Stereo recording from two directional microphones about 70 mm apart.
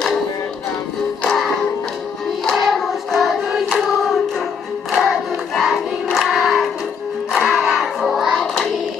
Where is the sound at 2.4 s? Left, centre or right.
Centre.